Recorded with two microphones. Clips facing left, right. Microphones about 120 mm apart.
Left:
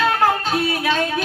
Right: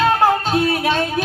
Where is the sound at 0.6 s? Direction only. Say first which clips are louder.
Right 2 dB; 40° right (ahead or behind).